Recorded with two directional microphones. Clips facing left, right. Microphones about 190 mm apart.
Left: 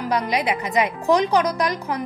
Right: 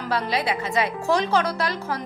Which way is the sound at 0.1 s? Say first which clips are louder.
Left 2 dB; 15° left (ahead or behind).